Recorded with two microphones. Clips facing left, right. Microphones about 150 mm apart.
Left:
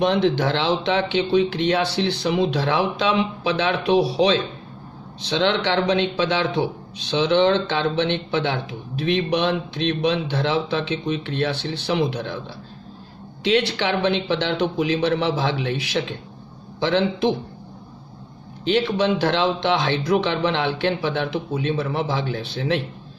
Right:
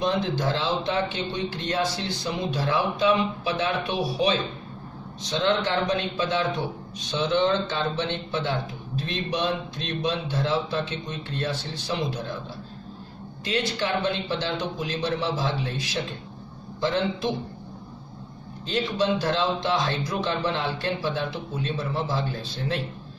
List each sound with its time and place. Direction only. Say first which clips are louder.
0.0 s a man's voice: left 6 dB; 70° left (ahead or behind); by 4.4 s 85° left
5.2 s a man's voice: left 3 dB; 70° left (ahead or behind)
13.4 s a man's voice: left 7 dB; 75° left (ahead or behind)
18.7 s a man's voice: left 5 dB; 70° left (ahead or behind)